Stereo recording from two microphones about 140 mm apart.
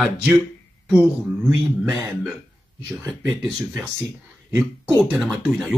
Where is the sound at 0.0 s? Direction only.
5° right (ahead or behind).